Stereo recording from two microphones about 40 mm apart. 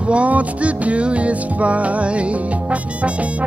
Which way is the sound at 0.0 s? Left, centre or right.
Right.